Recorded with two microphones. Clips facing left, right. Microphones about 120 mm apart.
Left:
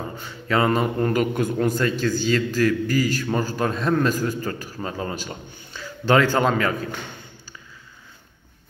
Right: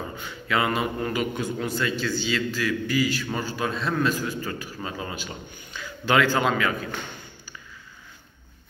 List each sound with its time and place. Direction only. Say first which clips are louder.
0.2 s a man's voice: left 4 dB; 40° left (ahead or behind)